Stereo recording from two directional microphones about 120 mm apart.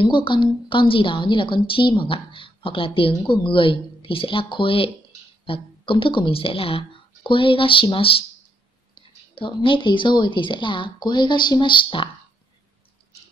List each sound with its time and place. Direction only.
0.0 s a woman's voice: 45° left (ahead or behind)